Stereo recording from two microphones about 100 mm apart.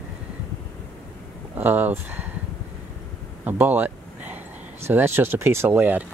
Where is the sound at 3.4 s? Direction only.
20° right (ahead or behind).